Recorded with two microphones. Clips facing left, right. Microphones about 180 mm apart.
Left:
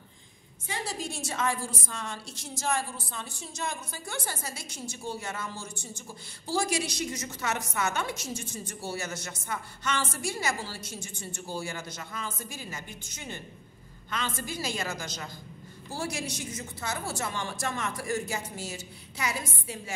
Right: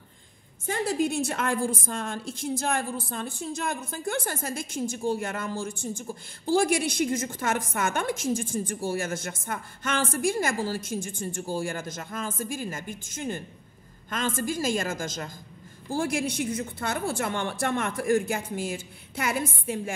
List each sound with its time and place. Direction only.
0.7 s a woman's voice: 55° right (ahead or behind)